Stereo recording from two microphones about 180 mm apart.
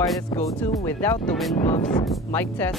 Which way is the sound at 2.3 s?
10° left (ahead or behind).